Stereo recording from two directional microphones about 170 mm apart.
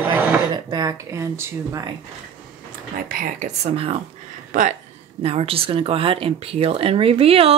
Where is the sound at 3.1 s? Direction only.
55° right (ahead or behind); by 4.0 s 35° right (ahead or behind).